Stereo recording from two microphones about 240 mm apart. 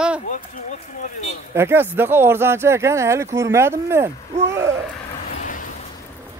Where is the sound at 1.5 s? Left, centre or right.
Centre.